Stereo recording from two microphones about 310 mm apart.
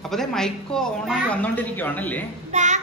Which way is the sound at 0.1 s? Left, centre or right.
Centre.